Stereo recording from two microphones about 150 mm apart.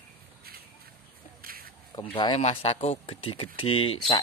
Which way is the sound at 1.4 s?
75° right (ahead or behind).